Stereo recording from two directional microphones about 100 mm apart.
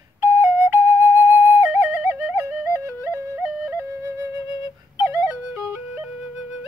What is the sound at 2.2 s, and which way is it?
Music, 20° right (ahead or behind).